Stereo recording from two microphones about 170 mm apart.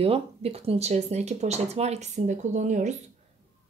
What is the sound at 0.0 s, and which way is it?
Speech, 35° right (ahead or behind).